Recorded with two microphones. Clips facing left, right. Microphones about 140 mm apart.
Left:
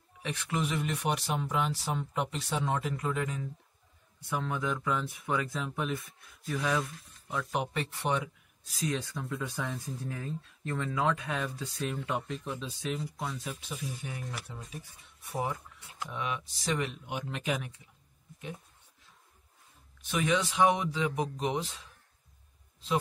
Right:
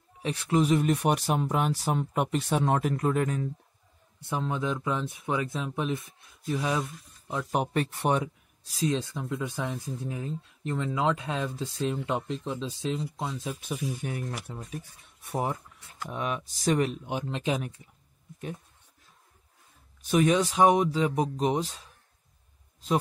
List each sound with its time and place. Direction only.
0.2 s speech: 35° right (ahead or behind)
4.2 s speech: 25° right (ahead or behind)
7.5 s speech: 45° right (ahead or behind)
8.6 s speech: 30° right (ahead or behind)
13.6 s speech: 55° right (ahead or behind)
16.1 s speech: 45° right (ahead or behind); by 17.6 s 25° right (ahead or behind)
17.8 s speech: 50° right (ahead or behind)
20.0 s speech: 40° right (ahead or behind)